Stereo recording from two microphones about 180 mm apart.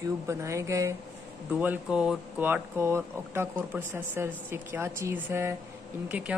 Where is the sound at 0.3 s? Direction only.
15° right (ahead or behind).